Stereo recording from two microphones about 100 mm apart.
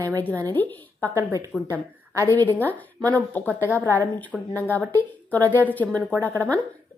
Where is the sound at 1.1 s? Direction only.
35° right (ahead or behind).